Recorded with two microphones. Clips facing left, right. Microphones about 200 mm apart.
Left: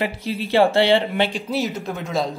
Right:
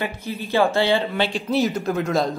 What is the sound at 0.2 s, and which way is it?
Speech, 85° left.